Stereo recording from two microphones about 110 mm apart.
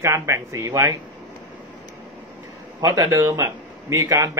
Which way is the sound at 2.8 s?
35° right (ahead or behind).